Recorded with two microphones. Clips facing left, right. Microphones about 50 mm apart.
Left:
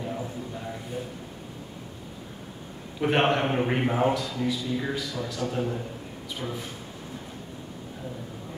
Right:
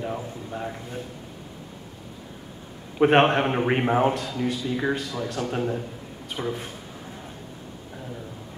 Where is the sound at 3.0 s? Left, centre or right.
Right.